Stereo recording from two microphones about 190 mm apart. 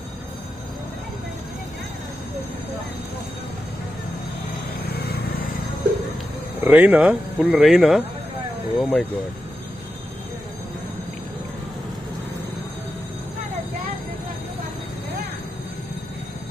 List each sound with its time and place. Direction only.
4.8 s vehicle: 55° left (ahead or behind)
6.6 s speech: 10° right (ahead or behind)